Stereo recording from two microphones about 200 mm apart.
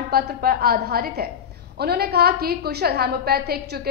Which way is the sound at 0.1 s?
50° right (ahead or behind).